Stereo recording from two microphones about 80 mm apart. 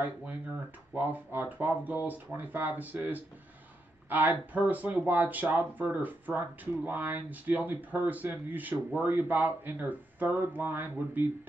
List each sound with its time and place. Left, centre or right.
0.9 s speech: right